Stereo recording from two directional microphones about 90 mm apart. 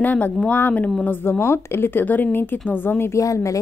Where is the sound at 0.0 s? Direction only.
20° left (ahead or behind).